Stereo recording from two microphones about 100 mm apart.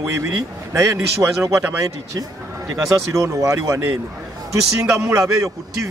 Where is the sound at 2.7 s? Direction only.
30° right (ahead or behind).